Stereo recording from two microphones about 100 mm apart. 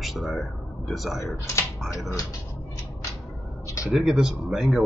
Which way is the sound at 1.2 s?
30° left (ahead or behind).